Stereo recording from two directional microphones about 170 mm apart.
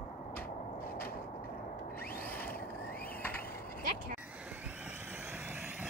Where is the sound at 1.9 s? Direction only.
60° left (ahead or behind).